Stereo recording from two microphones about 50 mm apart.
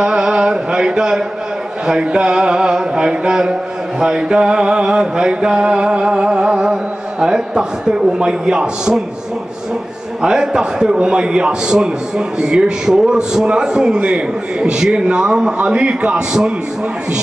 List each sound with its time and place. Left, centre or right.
0.0 s music: centre
1.9 s mantra: centre
10.2 s mantra: centre
15.6 s a man's voice: centre